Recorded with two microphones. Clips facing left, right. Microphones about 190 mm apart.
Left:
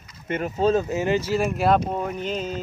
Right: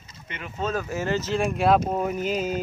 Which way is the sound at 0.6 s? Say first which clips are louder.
Left 7 dB; 30° left (ahead or behind).